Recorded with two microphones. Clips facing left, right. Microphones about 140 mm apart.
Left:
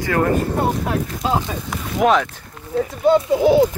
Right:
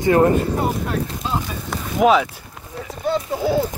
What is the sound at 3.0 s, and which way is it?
Speech, 90° left.